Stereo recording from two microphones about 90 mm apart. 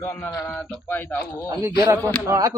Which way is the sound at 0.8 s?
20° left (ahead or behind).